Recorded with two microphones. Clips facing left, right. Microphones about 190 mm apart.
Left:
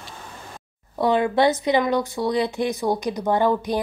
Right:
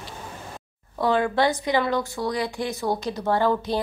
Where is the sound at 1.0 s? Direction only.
20° left (ahead or behind).